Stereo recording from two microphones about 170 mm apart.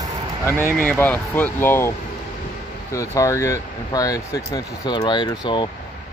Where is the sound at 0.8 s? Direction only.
10° left (ahead or behind).